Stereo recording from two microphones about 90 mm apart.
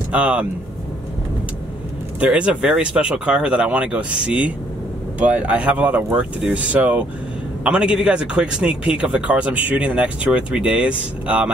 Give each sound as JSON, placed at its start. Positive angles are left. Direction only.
{"t": 0.1, "sound": "speech", "side_deg": -15}
{"t": 2.1, "sound": "speech", "side_deg": -15}